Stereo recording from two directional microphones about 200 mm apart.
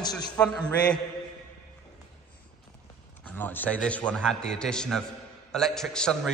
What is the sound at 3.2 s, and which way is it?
A man's voice, 10° left (ahead or behind).